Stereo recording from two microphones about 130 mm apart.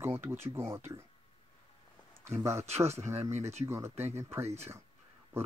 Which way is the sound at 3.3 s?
55° right (ahead or behind).